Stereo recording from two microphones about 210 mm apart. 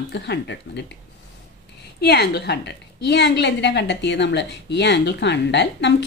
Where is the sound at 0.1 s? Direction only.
55° left (ahead or behind).